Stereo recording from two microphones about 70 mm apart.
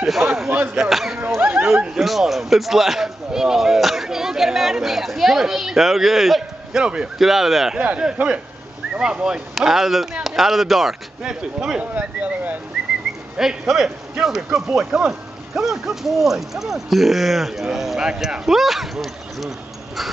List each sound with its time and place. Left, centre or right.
0.0 s speech: centre
0.5 s speech: right
0.7 s speech: centre
1.6 s a sound: centre
2.0 s speech: centre
6.8 s speech: centre
11.8 s speech: right
13.4 s speech: centre